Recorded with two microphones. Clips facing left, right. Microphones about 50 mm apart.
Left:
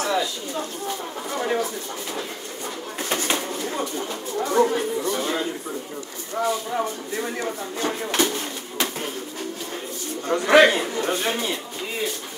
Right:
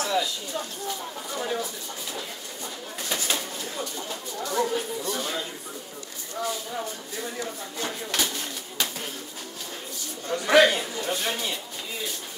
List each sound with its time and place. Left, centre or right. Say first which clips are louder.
0.0 s a sound: left 3 dB; left
1.3 s speech: left 6 dB; left
3.0 s speech: left 5 dB; left
6.4 s speech: left 7 dB; left
10.2 s a man's voice: left 4 dB; left